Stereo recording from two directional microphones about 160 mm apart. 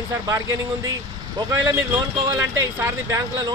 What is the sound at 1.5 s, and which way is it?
Speech, 20° right (ahead or behind).